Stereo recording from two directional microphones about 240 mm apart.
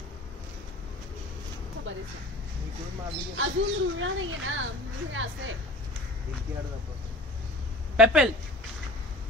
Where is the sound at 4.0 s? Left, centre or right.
Right.